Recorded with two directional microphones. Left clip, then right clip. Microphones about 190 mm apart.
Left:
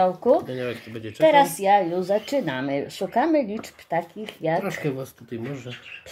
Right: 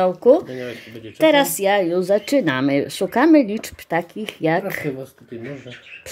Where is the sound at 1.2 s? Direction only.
30° right (ahead or behind).